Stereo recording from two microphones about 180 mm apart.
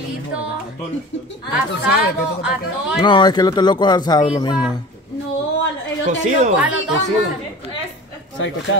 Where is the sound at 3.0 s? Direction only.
25° left (ahead or behind).